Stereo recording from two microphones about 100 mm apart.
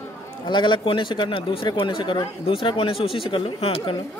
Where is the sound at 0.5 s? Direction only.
50° left (ahead or behind); by 4.0 s 65° left (ahead or behind).